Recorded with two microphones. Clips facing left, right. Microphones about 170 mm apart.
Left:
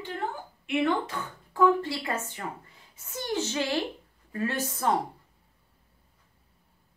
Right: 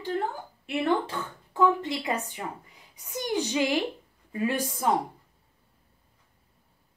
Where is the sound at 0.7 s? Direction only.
35° right (ahead or behind); by 4.9 s 15° right (ahead or behind).